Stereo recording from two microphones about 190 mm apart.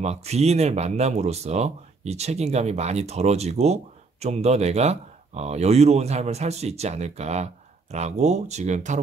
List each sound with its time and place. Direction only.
0.0 s speech: 35° right (ahead or behind)